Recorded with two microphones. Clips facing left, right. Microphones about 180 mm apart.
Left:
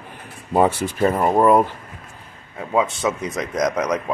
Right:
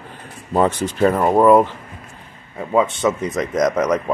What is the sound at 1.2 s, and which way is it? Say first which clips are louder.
A man's voice: right 3 dB; centre (ahead or behind).